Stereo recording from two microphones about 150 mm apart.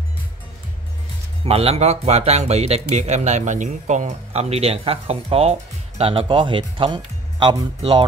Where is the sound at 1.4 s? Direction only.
40° right (ahead or behind).